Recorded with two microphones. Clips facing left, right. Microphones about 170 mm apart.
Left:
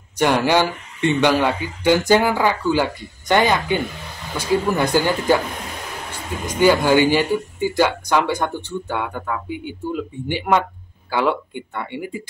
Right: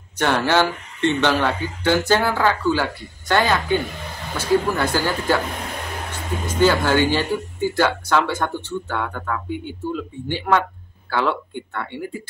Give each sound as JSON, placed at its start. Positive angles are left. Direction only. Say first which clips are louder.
{"t": 0.2, "sound": "speech", "louder": "left 2 dB", "side_deg": 15}
{"t": 6.4, "sound": "speech", "louder": "left 2 dB", "side_deg": 15}